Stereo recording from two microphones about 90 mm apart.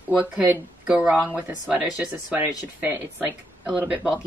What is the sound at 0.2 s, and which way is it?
Speech, 15° right (ahead or behind).